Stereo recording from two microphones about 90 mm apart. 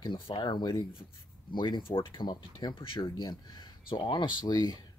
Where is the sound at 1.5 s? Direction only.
60° left (ahead or behind).